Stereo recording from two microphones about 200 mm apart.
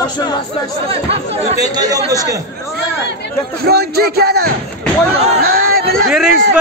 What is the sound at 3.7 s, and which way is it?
Speech, 55° right (ahead or behind).